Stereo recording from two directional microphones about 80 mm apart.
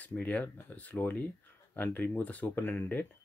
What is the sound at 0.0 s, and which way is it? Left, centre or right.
Speech, centre.